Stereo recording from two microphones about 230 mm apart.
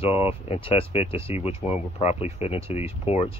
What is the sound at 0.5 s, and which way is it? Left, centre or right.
Speech, left.